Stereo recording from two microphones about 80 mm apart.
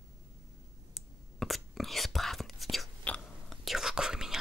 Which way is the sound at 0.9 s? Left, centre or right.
Centre.